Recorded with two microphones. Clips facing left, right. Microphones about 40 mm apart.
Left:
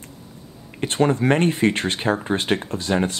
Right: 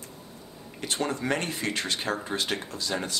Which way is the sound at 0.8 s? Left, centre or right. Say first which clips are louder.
Left 10 dB; left.